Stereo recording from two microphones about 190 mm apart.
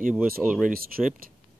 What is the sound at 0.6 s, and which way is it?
Speech, 50° right (ahead or behind).